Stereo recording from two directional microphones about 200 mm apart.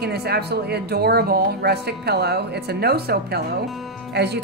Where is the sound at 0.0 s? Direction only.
55° right (ahead or behind).